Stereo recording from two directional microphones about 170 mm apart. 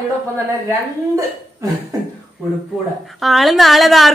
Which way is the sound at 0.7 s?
20° right (ahead or behind).